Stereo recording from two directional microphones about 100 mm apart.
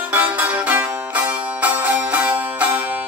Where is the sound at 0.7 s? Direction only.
15° right (ahead or behind).